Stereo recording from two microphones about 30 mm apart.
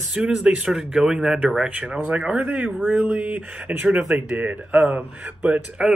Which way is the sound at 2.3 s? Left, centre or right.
Right.